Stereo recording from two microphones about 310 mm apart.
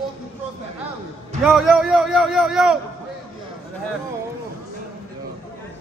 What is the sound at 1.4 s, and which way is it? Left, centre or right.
A man's voice, centre.